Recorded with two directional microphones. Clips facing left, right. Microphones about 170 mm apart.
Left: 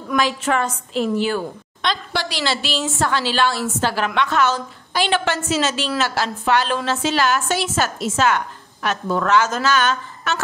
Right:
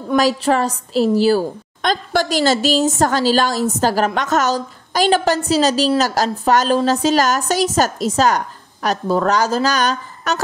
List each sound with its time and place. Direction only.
0.1 s a woman's voice: 35° right (ahead or behind)